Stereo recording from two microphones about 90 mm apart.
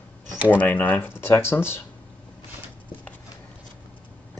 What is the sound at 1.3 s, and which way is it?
Speech, 30° left (ahead or behind).